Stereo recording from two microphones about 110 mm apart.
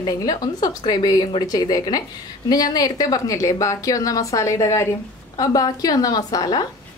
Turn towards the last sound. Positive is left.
turn(degrees=35)  # may be behind; listen again after turning